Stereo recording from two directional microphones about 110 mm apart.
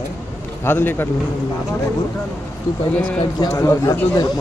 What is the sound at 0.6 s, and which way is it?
Speech, 20° left (ahead or behind).